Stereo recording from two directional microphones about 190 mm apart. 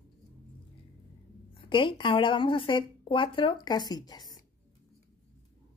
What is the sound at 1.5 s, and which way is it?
Speech, 25° left (ahead or behind).